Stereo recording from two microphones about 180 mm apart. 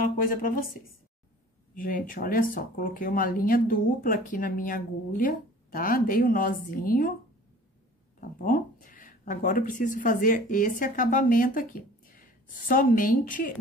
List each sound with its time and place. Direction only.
0.0 s speech: 50° left (ahead or behind)
1.8 s speech: 50° left (ahead or behind)
8.2 s speech: 50° left (ahead or behind)